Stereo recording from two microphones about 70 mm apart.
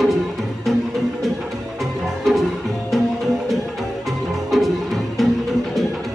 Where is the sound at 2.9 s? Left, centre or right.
Centre.